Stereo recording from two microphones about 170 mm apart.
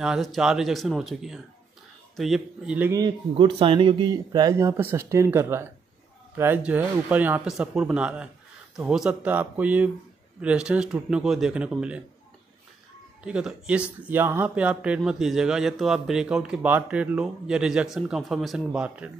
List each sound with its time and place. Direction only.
0.0 s speech: centre (ahead or behind)
2.9 s speech: 25° right (ahead or behind); by 12.0 s 5° right (ahead or behind)
13.2 s speech: 5° right (ahead or behind)